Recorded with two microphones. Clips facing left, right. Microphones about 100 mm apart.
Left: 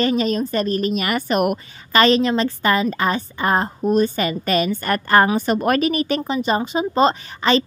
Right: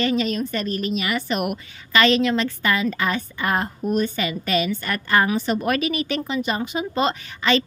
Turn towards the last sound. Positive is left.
turn(degrees=35)  # may be behind; listen again after turning